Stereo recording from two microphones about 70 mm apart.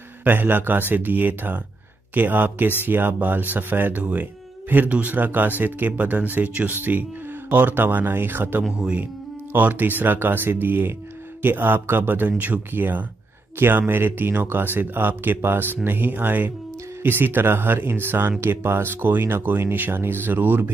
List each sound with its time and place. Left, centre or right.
0.2 s speech: right
8.7 s speech: centre